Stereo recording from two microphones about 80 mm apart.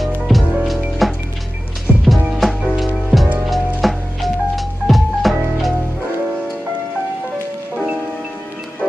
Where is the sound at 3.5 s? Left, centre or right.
Centre.